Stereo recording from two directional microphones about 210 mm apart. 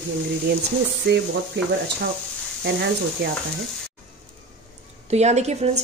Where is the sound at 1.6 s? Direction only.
55° right (ahead or behind).